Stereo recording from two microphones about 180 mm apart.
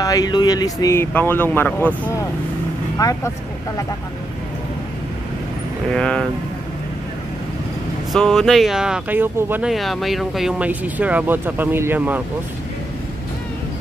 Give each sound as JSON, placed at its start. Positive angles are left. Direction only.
{"t": 0.0, "sound": "speech", "side_deg": 20}
{"t": 5.9, "sound": "speech", "side_deg": 5}
{"t": 8.1, "sound": "speech", "side_deg": 0}